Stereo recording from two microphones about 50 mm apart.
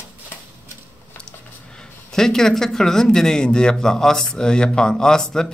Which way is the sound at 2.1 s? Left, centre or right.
Centre.